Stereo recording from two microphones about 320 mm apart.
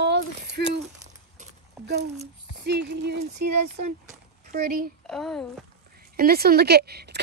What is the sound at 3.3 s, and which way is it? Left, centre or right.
Speech, right.